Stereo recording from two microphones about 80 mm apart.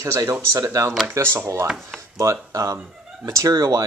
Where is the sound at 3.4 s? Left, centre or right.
Right.